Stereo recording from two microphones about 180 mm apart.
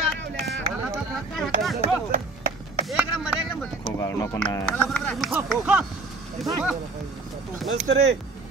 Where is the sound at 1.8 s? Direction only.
60° right (ahead or behind).